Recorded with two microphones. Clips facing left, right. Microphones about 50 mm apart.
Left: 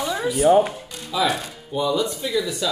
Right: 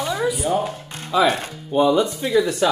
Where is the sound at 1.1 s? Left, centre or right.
Right.